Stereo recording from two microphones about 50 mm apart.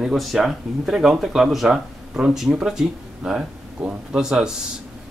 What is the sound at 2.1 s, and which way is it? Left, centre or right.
A man's voice, centre.